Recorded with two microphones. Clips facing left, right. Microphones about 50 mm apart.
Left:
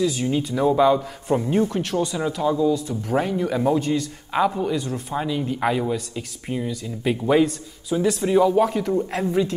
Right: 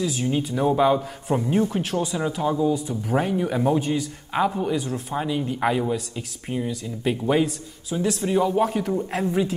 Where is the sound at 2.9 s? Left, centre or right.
Centre.